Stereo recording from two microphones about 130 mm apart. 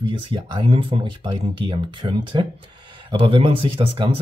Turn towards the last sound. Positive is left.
turn(degrees=-40)  # may be behind; listen again after turning